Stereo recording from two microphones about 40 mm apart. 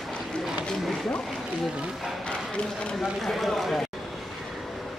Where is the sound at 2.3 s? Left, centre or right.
Left.